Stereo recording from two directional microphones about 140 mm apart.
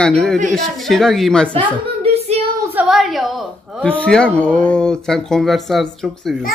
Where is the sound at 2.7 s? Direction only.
5° right (ahead or behind).